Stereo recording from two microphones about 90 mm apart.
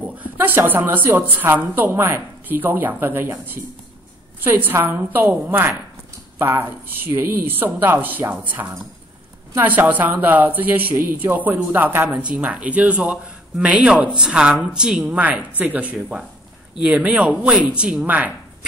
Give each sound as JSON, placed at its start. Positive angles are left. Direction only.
{"t": 0.0, "sound": "speech", "side_deg": -15}
{"t": 12.1, "sound": "speech", "side_deg": -10}